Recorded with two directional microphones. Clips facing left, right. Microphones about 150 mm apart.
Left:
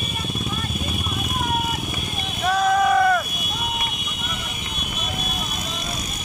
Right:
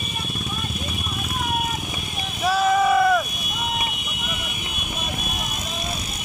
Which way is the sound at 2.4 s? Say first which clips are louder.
Even; 5° right (ahead or behind).